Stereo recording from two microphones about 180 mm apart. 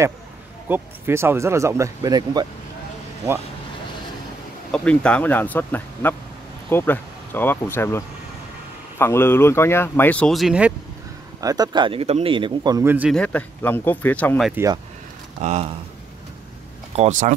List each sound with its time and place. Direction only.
0.7 s speech: 10° right (ahead or behind)
4.7 s speech: 5° left (ahead or behind)
11.4 s speech: 20° right (ahead or behind)
13.1 s speech: 10° left (ahead or behind)
14.5 s speech: 15° right (ahead or behind)
15.4 s speech: 35° right (ahead or behind)
16.9 s speech: 40° right (ahead or behind)